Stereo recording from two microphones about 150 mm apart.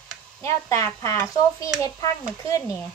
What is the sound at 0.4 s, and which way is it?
Dishes, 20° left (ahead or behind).